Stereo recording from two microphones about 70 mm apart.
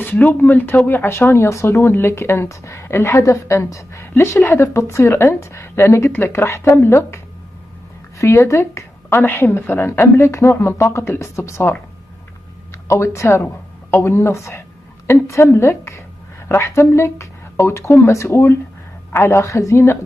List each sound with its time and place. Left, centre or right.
0.0 s speech: left
4.1 s speech: left
8.2 s speech: left
12.8 s speech: left